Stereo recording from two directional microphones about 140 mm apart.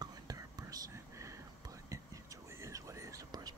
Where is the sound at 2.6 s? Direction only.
20° right (ahead or behind).